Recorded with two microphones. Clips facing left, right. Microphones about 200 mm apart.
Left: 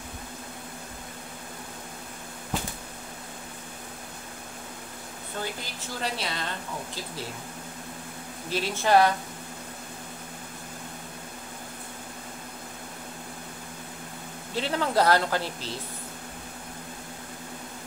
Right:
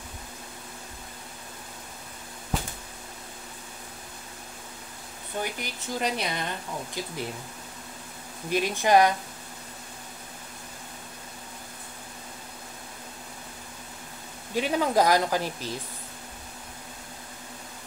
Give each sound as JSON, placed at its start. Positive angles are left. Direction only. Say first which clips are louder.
{"t": 5.4, "sound": "speech", "louder": "right 2 dB", "side_deg": -15}
{"t": 8.5, "sound": "speech", "louder": "right 2 dB", "side_deg": -15}
{"t": 14.5, "sound": "speech", "louder": "right 2 dB", "side_deg": -15}